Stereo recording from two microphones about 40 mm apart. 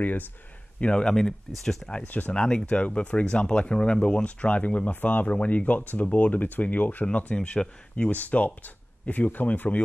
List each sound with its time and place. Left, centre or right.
0.7 s speech: left
1.0 s speech: centre
2.0 s speech: left
2.3 s speech: left
7.1 s speech: left
8.1 s speech: left